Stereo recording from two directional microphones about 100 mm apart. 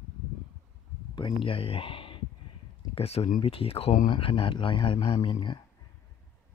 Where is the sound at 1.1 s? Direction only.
60° left (ahead or behind).